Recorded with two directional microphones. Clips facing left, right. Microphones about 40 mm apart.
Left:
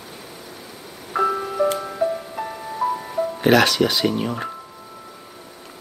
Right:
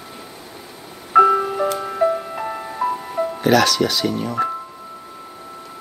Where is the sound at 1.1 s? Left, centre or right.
Right.